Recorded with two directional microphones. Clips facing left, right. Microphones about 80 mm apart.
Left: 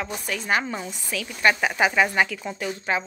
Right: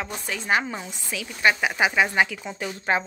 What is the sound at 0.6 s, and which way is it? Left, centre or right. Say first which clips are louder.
A woman's voice: left 1 dB; centre.